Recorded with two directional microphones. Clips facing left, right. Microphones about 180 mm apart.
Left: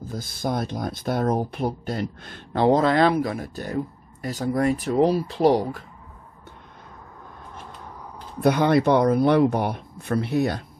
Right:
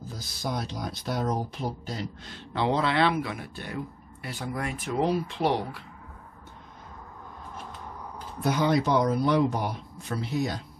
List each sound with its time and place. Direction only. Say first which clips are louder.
0.1 s speech: left 6 dB; 55° left (ahead or behind)
8.4 s speech: left 6 dB; 65° left (ahead or behind)